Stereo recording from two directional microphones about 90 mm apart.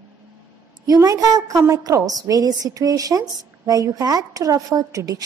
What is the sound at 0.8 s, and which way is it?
Speech, 40° right (ahead or behind).